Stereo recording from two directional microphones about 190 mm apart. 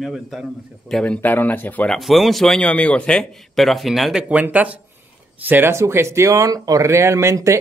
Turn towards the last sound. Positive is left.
turn(degrees=-15)  # may be behind; listen again after turning